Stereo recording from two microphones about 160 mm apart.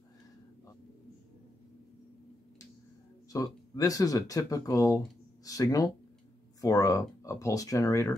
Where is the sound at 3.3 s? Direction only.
20° left (ahead or behind).